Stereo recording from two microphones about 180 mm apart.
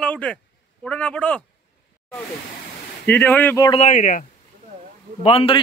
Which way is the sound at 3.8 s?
45° left (ahead or behind).